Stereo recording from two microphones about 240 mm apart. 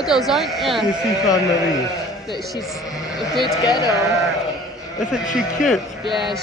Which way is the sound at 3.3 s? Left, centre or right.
Centre.